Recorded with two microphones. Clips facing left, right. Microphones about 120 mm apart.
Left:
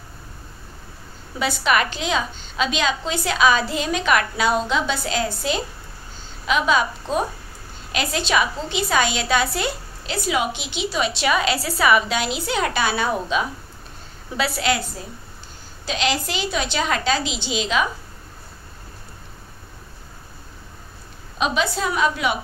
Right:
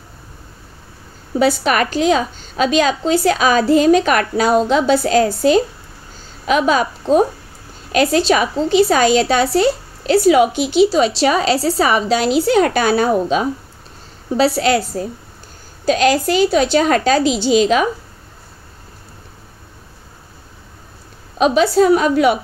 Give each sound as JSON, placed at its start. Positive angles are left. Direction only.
{"t": 1.4, "sound": "a woman's voice", "side_deg": -40}
{"t": 21.4, "sound": "a woman's voice", "side_deg": -40}